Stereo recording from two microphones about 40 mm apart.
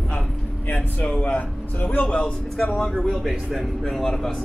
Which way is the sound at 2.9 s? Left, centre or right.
Centre.